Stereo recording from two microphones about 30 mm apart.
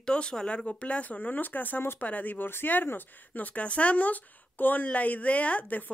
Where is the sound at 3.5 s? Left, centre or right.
Left.